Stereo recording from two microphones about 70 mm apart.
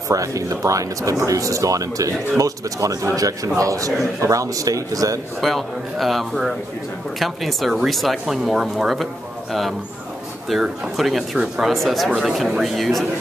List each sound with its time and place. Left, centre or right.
0.1 s a man's voice: right
5.4 s speech: centre
11.7 s speech: centre